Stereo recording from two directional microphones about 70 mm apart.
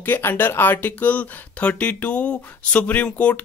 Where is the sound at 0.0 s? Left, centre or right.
Left.